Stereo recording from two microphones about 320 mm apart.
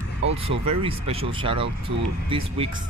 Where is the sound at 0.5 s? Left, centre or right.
Centre.